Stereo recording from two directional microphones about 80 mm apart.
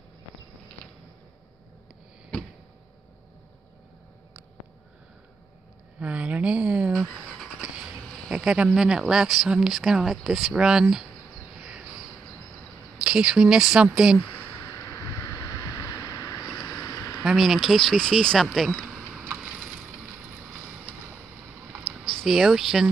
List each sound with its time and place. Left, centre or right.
5.9 s a sound: centre
6.9 s squeal: centre
8.1 s insect: centre
8.7 s speech: centre
11.5 s a sound: centre
13.0 s speech: centre
14.6 s vehicle: left
16.6 s a sound: left
17.2 s speech: centre
19.8 s vehicle: right
21.8 s a sound: centre
22.3 s speech: centre